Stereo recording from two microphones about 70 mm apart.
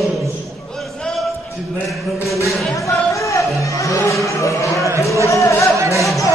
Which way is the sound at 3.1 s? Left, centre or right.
Left.